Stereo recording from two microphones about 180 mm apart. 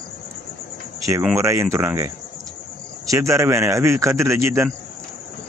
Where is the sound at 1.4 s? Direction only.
15° right (ahead or behind).